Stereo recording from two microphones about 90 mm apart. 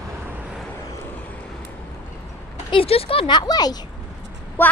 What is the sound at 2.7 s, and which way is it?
Speech, 90° left.